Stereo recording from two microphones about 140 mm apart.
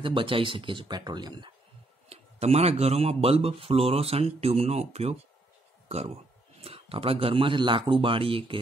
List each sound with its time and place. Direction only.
0.0 s speech: 35° right (ahead or behind)
2.0 s speech: 50° right (ahead or behind)